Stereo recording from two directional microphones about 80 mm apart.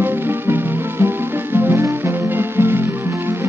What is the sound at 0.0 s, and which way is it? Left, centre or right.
Music, right.